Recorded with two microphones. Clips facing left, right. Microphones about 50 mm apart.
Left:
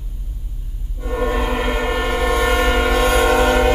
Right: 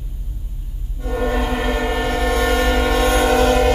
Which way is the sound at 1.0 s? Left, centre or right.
Centre.